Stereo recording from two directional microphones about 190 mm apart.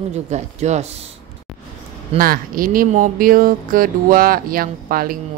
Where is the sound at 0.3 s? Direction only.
35° right (ahead or behind).